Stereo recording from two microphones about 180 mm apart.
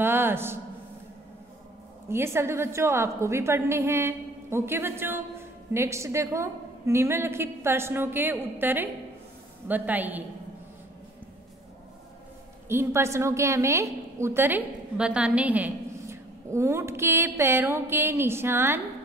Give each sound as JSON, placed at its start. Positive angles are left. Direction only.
{"t": 0.0, "sound": "a sound", "side_deg": -10}
{"t": 2.0, "sound": "a woman's voice", "side_deg": -15}
{"t": 12.6, "sound": "a woman's voice", "side_deg": -15}